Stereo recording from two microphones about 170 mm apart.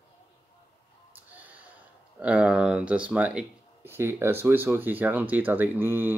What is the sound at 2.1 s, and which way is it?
Speech, 5° right (ahead or behind).